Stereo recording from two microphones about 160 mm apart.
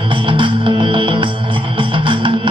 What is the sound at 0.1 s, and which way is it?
Music, 30° right (ahead or behind).